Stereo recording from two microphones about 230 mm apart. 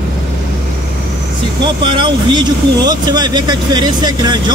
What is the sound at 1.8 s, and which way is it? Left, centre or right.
Speech, right.